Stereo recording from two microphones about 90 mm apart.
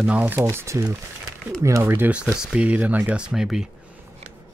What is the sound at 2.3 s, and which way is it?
Speech, 10° right (ahead or behind).